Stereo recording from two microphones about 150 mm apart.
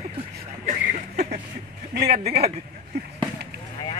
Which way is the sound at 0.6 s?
55° right (ahead or behind).